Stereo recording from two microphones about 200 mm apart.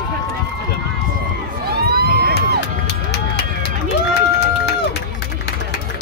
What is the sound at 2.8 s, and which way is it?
Run, 55° left (ahead or behind).